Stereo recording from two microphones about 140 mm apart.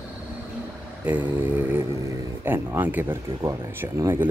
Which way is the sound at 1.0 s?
10° right (ahead or behind).